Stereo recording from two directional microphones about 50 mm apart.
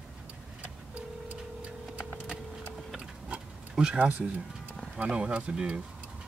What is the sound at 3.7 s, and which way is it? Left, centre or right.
Speech, centre.